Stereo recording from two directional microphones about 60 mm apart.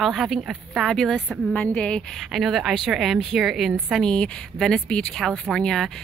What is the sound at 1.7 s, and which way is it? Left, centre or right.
Speech, centre.